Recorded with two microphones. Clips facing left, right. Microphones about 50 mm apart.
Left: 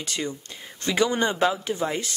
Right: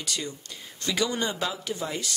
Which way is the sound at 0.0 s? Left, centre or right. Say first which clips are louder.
Left 3 dB; left.